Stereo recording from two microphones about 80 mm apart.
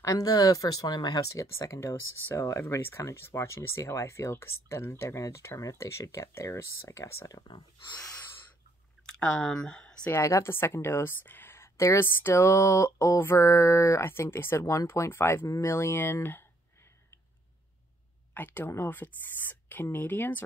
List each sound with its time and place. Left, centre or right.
0.0 s speech: left
0.8 s speech: left
1.2 s speech: left
7.4 s speech: left
9.0 s speech: centre
10.1 s speech: left
15.4 s speech: left
15.7 s speech: left
18.3 s speech: left